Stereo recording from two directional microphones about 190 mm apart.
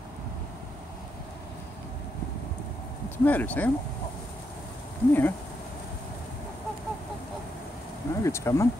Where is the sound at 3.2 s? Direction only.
10° left (ahead or behind).